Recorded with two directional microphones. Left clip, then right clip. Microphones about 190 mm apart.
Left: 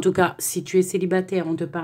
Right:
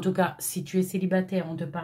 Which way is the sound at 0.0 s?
40° left (ahead or behind).